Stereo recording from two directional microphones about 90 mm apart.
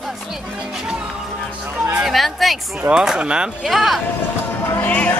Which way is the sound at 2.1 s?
Centre (ahead or behind).